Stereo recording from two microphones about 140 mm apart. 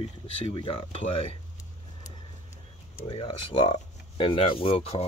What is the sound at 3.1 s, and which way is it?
Speech, 40° left (ahead or behind).